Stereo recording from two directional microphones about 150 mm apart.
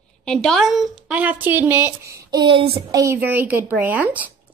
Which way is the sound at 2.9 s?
20° right (ahead or behind).